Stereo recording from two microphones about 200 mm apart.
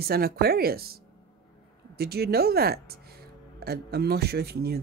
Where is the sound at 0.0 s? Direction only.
50° right (ahead or behind).